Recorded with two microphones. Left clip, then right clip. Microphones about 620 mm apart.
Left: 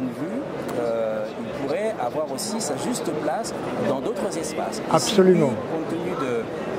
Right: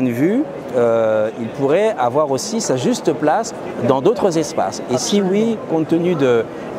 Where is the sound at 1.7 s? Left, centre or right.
Right.